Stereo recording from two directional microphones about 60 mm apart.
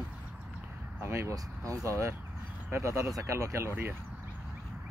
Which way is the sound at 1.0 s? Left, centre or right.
Right.